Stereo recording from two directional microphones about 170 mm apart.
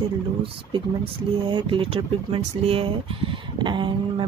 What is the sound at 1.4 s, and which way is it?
Speech, 30° right (ahead or behind).